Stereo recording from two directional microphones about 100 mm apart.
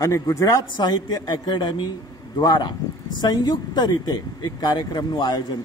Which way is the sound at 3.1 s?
45° left (ahead or behind).